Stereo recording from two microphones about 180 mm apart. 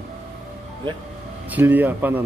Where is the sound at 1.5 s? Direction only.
10° right (ahead or behind).